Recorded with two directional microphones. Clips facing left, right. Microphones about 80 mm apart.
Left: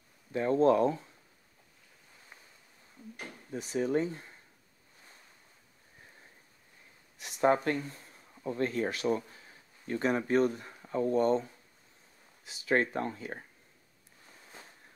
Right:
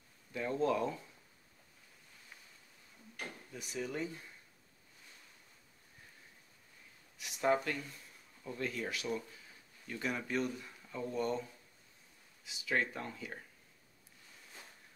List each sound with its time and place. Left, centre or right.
0.3 s speech: left
3.5 s speech: left
7.2 s speech: left